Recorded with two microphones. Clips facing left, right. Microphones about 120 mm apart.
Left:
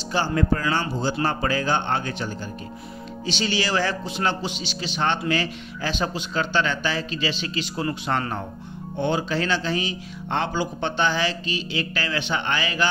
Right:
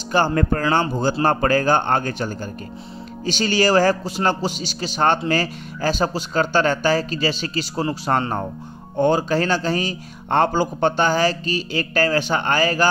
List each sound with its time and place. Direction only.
0.1 s speech: 50° right (ahead or behind)